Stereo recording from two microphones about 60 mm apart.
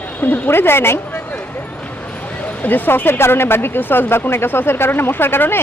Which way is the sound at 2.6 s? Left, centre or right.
Left.